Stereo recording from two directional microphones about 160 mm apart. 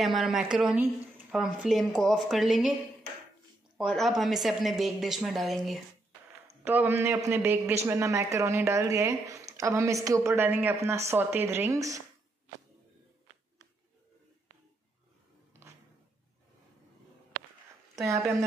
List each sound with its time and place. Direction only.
0.0 s a woman's voice: centre (ahead or behind)
3.7 s a woman's voice: centre (ahead or behind)
6.6 s a man's voice: 10° right (ahead or behind)
17.9 s a woman's voice: 20° right (ahead or behind)